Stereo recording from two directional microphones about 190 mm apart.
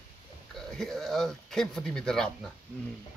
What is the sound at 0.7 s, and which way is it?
Speech, centre (ahead or behind).